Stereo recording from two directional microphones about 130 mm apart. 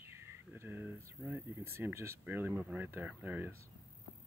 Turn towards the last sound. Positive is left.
turn(degrees=-15)  # may be behind; listen again after turning